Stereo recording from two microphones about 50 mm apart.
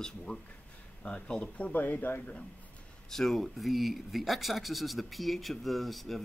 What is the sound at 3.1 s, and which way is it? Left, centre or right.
Speech, centre.